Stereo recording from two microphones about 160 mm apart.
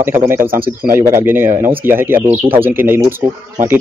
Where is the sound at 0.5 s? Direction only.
65° right (ahead or behind).